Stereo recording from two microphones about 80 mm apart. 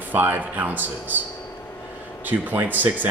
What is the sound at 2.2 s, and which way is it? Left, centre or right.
Speech, right.